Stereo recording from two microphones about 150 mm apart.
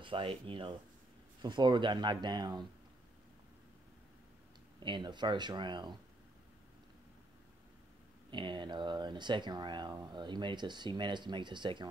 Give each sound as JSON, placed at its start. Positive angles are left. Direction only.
{"t": 0.0, "sound": "speech", "side_deg": -35}
{"t": 4.7, "sound": "speech", "side_deg": -30}
{"t": 8.3, "sound": "speech", "side_deg": -30}